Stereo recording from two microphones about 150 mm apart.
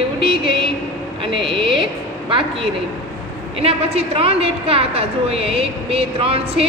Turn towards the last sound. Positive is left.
turn(degrees=-40)  # may be behind; listen again after turning